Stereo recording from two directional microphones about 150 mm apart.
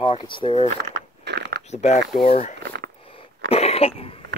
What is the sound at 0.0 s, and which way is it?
Speech, 35° left (ahead or behind).